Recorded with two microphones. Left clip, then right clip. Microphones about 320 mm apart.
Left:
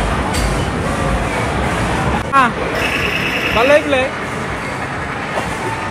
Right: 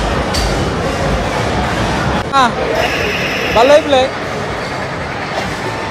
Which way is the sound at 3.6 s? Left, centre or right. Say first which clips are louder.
Right 3 dB; centre.